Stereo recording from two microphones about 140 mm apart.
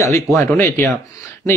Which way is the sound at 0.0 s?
20° left (ahead or behind).